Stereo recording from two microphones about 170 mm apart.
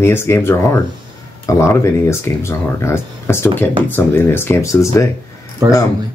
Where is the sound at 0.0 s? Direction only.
15° left (ahead or behind).